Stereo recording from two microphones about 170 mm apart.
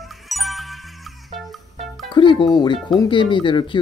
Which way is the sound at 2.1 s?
25° left (ahead or behind).